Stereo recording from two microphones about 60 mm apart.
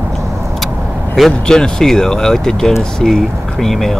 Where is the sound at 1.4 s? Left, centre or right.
Centre.